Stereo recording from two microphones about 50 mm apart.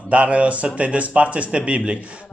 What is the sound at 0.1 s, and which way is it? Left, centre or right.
A man's voice, right.